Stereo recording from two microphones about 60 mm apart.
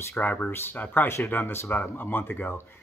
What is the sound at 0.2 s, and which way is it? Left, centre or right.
Speech, left.